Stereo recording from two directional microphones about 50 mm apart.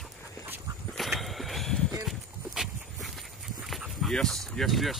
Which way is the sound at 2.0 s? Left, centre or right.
Centre.